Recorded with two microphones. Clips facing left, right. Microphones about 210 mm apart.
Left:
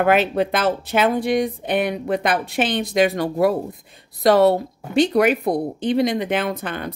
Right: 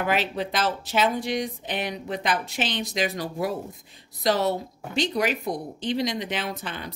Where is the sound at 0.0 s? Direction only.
55° left (ahead or behind).